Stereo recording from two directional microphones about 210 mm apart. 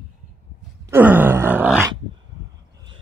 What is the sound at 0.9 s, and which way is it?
Groan, 10° right (ahead or behind).